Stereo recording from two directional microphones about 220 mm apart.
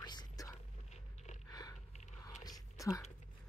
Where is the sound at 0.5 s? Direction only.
30° left (ahead or behind).